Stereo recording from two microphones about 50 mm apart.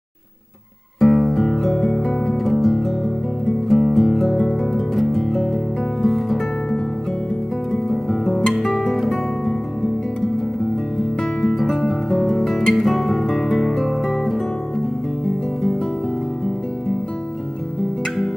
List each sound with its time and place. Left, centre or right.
1.0 s music: centre
7.7 s guitar: centre
10.2 s music: centre